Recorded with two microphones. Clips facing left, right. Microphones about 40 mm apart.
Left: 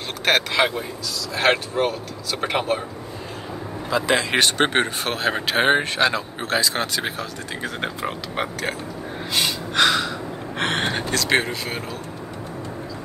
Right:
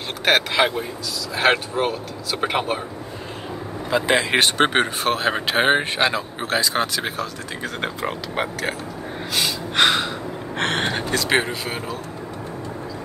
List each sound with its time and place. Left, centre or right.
0.2 s speech: centre
3.9 s speech: centre
9.8 s gasp: right
10.6 s speech: centre